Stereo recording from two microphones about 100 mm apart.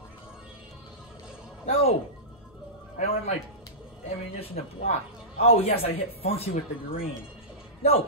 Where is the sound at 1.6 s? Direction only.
75° left (ahead or behind).